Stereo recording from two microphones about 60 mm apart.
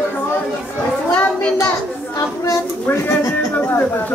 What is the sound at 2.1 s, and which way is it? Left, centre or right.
Speech, left.